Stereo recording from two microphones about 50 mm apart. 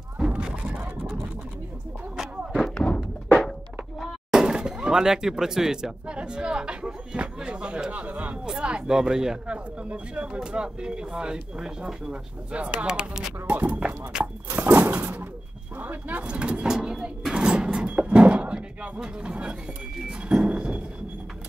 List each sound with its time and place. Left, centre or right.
0.3 s a sound: centre
0.7 s vehicle: right
2.5 s thunk: centre
3.3 s music: centre
4.3 s speech: centre
9.8 s speech: right
13.5 s speech: right
14.7 s a sound: right
15.8 s speech: right
16.7 s music: centre
17.3 s a sound: centre
18.9 s speech: centre
20.1 s a sound: centre